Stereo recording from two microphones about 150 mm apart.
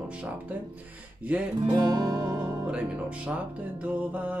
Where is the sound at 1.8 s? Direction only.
30° right (ahead or behind).